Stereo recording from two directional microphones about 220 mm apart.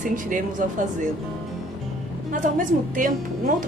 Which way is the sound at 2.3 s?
35° right (ahead or behind).